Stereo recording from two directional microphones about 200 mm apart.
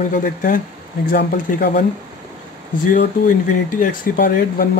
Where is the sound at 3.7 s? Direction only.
45° left (ahead or behind).